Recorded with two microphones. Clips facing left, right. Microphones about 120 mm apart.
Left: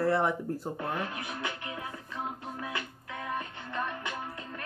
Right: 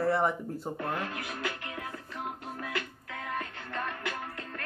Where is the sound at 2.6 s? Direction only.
25° left (ahead or behind).